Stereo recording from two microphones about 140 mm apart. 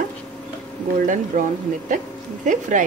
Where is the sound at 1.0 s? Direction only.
65° right (ahead or behind).